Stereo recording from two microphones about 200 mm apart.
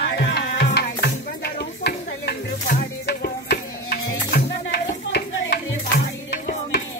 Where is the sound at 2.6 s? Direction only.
50° left (ahead or behind).